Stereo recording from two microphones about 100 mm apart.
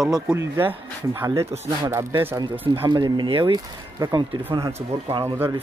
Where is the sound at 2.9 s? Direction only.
45° right (ahead or behind).